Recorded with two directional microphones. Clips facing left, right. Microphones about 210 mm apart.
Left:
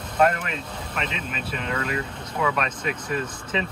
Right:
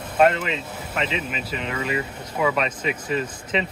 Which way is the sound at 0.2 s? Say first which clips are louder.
Right 3 dB; 25° right (ahead or behind).